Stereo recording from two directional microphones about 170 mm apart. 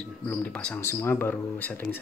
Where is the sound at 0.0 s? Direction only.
10° left (ahead or behind).